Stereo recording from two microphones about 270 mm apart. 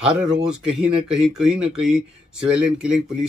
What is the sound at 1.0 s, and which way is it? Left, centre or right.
Speech, centre.